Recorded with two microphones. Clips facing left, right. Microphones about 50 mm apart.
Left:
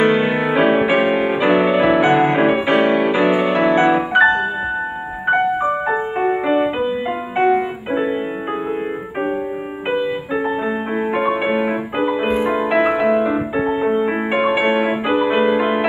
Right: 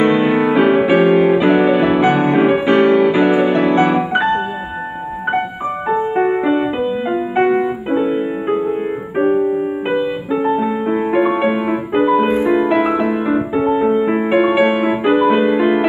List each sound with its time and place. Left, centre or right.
0.0 s music: centre
5.9 s music: centre
10.5 s music: centre
11.5 s music: left
12.4 s music: centre
15.3 s music: centre